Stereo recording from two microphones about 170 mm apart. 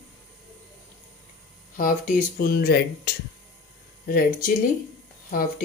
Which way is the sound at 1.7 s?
55° left (ahead or behind).